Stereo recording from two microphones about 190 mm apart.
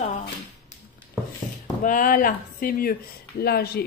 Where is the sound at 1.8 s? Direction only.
45° left (ahead or behind).